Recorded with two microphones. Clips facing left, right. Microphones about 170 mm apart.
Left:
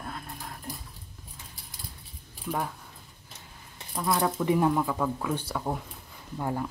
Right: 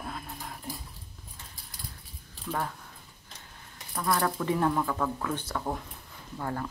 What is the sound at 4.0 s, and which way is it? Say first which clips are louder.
A woman's voice: left 1 dB; 15° left (ahead or behind).